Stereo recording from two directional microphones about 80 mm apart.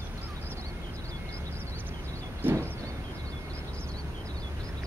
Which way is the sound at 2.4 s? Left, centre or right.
Right.